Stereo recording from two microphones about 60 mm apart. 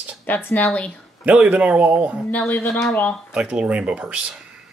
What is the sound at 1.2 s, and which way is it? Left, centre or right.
Speech, right.